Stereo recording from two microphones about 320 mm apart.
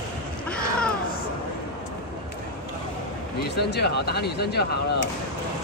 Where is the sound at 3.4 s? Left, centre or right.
Left.